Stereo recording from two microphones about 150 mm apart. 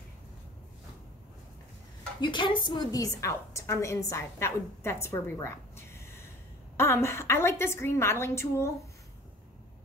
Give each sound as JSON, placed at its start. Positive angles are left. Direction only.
{"t": 2.1, "sound": "a woman's voice", "side_deg": 30}
{"t": 5.0, "sound": "a sound", "side_deg": 20}
{"t": 6.8, "sound": "a woman's voice", "side_deg": 20}